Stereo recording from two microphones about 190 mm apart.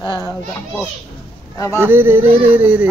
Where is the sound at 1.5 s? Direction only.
15° left (ahead or behind).